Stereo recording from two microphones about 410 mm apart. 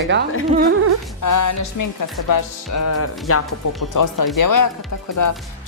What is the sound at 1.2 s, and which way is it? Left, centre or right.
Speech, left.